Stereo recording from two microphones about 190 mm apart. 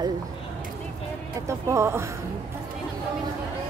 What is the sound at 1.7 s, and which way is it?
Speech, 15° right (ahead or behind).